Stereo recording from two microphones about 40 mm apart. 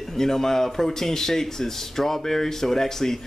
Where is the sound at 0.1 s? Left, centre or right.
Centre.